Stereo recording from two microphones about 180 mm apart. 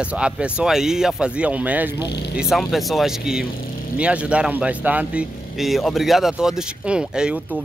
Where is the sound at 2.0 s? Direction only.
65° left (ahead or behind).